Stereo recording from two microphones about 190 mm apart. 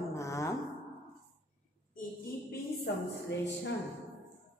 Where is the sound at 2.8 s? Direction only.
65° left (ahead or behind).